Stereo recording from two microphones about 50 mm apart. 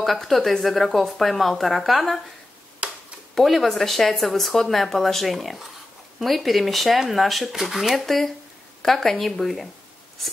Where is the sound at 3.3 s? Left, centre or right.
Centre.